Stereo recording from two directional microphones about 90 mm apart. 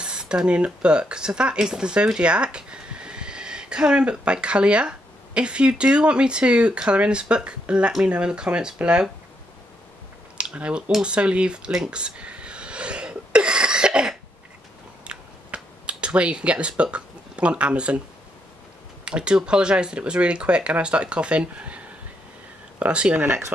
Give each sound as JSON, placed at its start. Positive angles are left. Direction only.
{"t": 0.0, "sound": "speech", "side_deg": -10}
{"t": 10.3, "sound": "a sound", "side_deg": -10}
{"t": 15.0, "sound": "computer keyboard", "side_deg": -10}
{"t": 19.0, "sound": "speech", "side_deg": -10}